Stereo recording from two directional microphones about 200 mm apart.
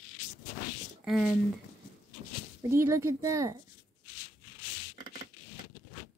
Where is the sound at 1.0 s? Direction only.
5° right (ahead or behind).